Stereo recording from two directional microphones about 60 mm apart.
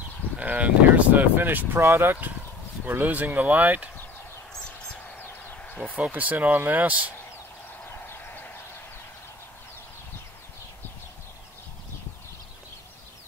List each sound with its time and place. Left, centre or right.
0.4 s speech: right
1.8 s speech: right
2.9 s speech: right
5.9 s speech: right
8.1 s a sound: left